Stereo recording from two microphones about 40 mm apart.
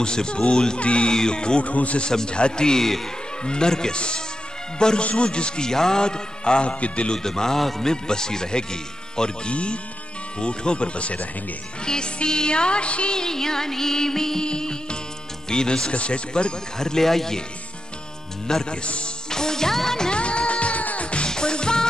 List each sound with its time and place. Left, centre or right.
0.0 s a man's voice: left
1.7 s a man's voice: left
2.0 s a man's voice: left
7.2 s music: centre
9.1 s a man's voice: left
13.1 s music: centre
15.5 s a man's voice: centre
16.7 s music: centre
18.5 s music: centre
20.1 s music: left
21.3 s music: left